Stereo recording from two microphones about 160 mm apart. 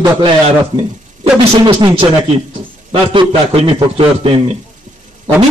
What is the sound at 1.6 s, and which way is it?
A man's voice, 30° right (ahead or behind).